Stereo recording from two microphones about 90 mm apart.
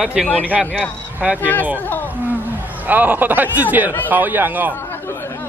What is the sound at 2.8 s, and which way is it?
Speech, 20° right (ahead or behind).